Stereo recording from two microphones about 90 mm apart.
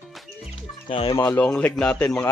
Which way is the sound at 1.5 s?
10° left (ahead or behind).